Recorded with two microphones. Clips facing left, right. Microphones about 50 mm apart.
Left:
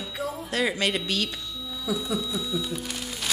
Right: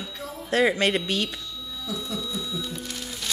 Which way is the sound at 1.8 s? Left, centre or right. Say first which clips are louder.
Left 4 dB; centre.